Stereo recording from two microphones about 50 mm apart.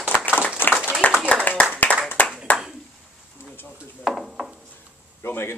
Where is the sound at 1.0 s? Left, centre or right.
Left.